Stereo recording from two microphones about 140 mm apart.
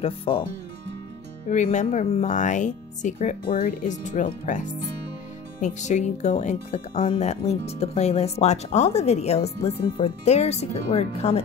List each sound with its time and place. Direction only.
0.0 s speech: 40° left (ahead or behind)
1.5 s speech: 60° left (ahead or behind); by 10.1 s 40° left (ahead or behind)
10.2 s speech: 50° left (ahead or behind)